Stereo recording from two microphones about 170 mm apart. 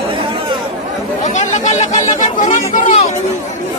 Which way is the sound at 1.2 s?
45° left (ahead or behind).